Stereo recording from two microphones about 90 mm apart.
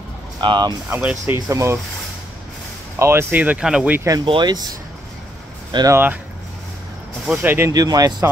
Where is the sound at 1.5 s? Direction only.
35° right (ahead or behind).